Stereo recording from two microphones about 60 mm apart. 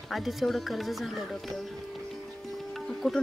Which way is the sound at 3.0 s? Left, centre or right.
Centre.